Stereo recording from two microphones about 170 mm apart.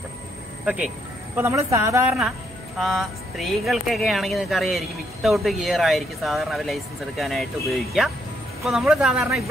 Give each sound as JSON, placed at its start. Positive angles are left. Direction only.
{"t": 0.7, "sound": "a woman's voice", "side_deg": -10}
{"t": 2.8, "sound": "speech", "side_deg": 0}